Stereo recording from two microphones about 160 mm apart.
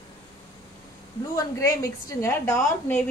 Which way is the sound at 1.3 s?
20° left (ahead or behind).